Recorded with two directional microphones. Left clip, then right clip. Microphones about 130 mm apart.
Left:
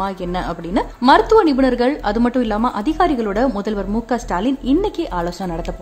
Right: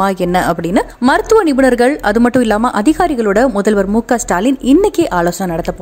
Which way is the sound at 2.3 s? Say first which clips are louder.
Right 6 dB; 55° right (ahead or behind).